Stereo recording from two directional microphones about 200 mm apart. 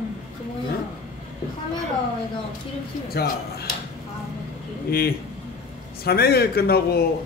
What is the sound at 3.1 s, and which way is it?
Speech, 50° left (ahead or behind).